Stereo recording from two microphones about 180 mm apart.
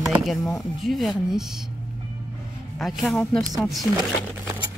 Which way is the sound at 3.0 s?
Centre (ahead or behind).